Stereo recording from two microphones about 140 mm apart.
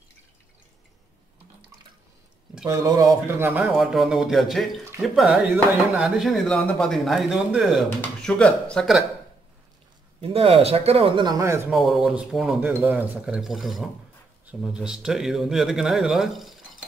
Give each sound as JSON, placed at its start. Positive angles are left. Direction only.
{"t": 2.7, "sound": "speech", "side_deg": -25}
{"t": 3.6, "sound": "speech", "side_deg": 0}
{"t": 8.0, "sound": "speech", "side_deg": 10}
{"t": 10.2, "sound": "speech", "side_deg": -45}
{"t": 11.7, "sound": "speech", "side_deg": 0}
{"t": 12.5, "sound": "speech", "side_deg": -15}